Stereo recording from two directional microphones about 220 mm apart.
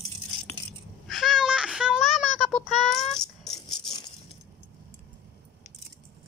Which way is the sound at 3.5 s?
20° left (ahead or behind).